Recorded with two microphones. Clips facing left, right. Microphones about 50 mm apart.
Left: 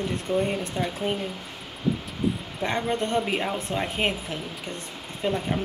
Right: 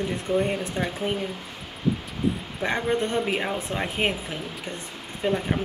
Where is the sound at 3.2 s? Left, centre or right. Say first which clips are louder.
Right 1 dB; centre.